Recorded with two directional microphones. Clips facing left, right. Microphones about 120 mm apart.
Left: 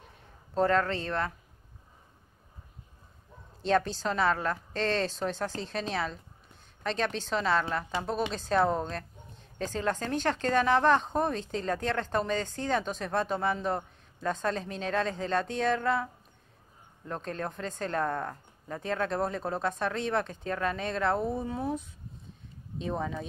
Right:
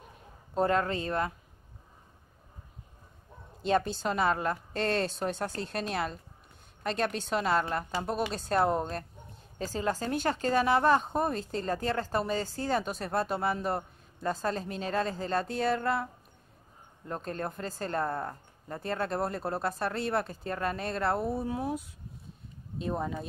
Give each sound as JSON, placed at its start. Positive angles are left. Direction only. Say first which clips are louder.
{"t": 0.6, "sound": "a woman's voice", "louder": "left 1 dB", "side_deg": -10}
{"t": 3.6, "sound": "a woman's voice", "louder": "left 1 dB", "side_deg": -5}